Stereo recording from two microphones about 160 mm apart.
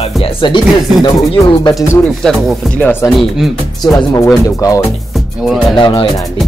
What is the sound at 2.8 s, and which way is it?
Speech, 10° left (ahead or behind).